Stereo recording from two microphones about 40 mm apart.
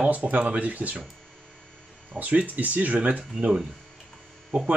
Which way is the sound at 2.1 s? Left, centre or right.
Right.